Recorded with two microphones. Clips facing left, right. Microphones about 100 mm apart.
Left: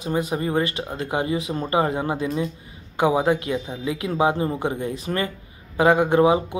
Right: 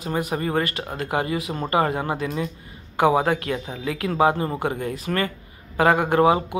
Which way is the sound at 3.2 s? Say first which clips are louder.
Left 2 dB; 20° left (ahead or behind).